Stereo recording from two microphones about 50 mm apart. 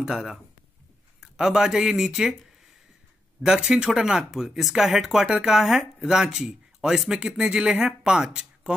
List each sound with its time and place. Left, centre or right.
0.0 s speech: centre
3.4 s speech: centre